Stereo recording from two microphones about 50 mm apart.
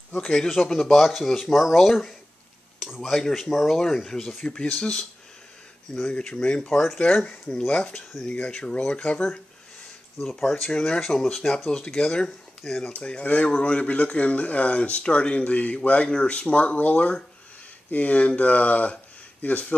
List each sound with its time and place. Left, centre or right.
0.1 s speech: centre
4.4 s speech: centre
7.6 s speech: left
10.6 s speech: centre
12.9 s speech: left